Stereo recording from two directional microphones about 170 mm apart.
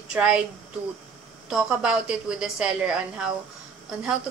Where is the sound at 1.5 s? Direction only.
5° right (ahead or behind).